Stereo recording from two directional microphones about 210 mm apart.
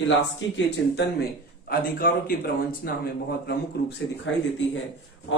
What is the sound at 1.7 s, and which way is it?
Speech, 45° left (ahead or behind).